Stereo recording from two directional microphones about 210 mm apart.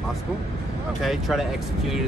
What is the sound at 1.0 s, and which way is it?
Speech, centre (ahead or behind).